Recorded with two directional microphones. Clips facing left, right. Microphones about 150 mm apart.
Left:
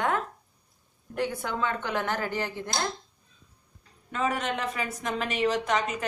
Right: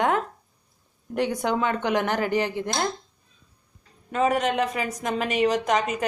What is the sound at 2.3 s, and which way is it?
Speech, 20° right (ahead or behind).